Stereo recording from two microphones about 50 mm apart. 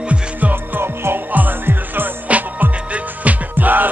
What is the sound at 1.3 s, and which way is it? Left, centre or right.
Music, right.